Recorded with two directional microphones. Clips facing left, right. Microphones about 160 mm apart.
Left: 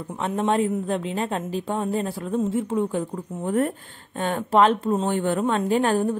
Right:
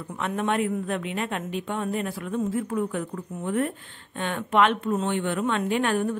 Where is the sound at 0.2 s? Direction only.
30° left (ahead or behind).